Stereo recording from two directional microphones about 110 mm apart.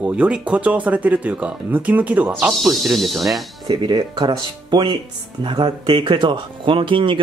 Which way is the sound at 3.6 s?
45° right (ahead or behind).